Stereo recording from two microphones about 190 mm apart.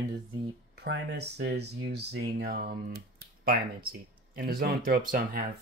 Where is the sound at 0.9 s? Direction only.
65° right (ahead or behind).